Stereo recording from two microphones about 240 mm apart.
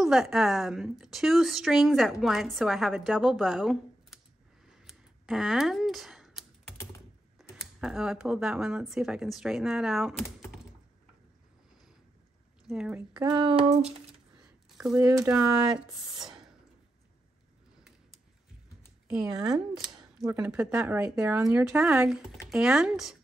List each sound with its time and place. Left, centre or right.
0.0 s a woman's voice: centre
4.8 s a sound: centre
7.3 s a woman's voice: centre
12.6 s speech: centre
13.2 s a sound: centre
14.7 s speech: centre
15.7 s speech: centre
19.0 s a woman's voice: centre